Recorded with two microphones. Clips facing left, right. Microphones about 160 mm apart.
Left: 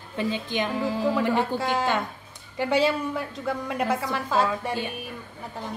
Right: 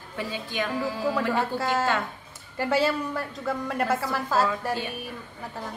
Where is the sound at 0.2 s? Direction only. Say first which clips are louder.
Left 4 dB; 20° left (ahead or behind).